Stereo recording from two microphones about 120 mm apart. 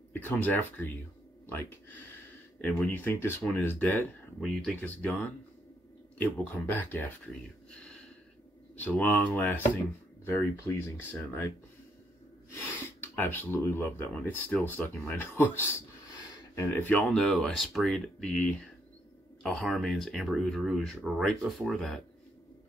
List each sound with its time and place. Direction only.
0.1 s speech: 15° left (ahead or behind)
4.4 s speech: centre (ahead or behind)
4.7 s speech: 15° left (ahead or behind)
8.7 s speech: 10° left (ahead or behind)
12.5 s speech: 15° left (ahead or behind)